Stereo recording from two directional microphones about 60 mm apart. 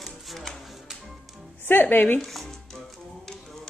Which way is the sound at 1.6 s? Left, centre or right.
Left.